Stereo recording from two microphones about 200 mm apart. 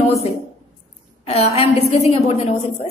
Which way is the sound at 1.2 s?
30° left (ahead or behind).